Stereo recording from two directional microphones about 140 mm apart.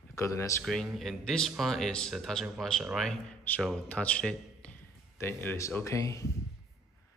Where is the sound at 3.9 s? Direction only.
10° left (ahead or behind).